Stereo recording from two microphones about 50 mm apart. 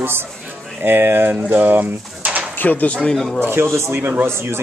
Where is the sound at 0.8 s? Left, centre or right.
Right.